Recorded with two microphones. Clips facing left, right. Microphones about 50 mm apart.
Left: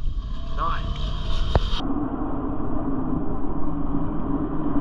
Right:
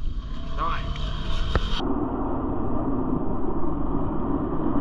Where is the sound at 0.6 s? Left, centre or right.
Right.